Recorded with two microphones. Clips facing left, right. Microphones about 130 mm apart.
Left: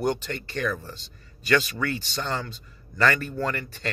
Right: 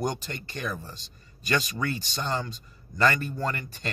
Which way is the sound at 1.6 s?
15° right (ahead or behind).